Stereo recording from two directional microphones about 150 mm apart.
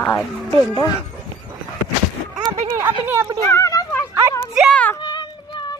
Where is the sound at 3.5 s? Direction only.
20° left (ahead or behind).